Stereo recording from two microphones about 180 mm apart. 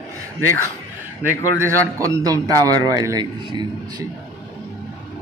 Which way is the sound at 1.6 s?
20° right (ahead or behind).